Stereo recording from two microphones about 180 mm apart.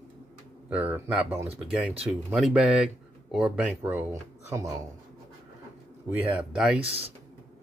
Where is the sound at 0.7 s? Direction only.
10° right (ahead or behind).